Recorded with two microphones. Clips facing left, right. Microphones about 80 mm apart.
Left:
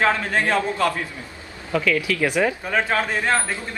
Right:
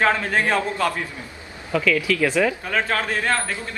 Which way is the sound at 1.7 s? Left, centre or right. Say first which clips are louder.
Right 1 dB; centre.